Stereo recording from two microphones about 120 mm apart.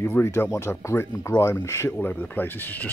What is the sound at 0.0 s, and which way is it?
Speech, 20° left (ahead or behind).